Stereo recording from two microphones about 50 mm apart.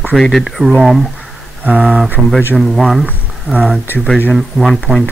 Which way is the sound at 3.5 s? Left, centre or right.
Right.